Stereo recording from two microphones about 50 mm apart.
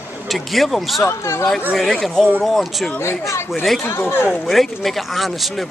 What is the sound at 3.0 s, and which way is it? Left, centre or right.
Speech, left.